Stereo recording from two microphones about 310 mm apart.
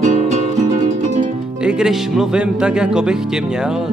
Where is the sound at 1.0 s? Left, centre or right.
Right.